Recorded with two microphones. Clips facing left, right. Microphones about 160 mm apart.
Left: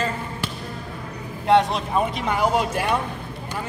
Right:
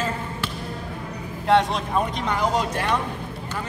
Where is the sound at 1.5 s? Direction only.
Centre (ahead or behind).